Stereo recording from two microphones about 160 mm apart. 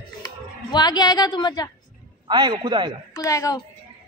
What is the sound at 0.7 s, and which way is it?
Speech, 25° left (ahead or behind).